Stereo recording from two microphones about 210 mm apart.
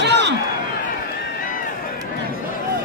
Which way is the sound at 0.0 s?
55° right (ahead or behind).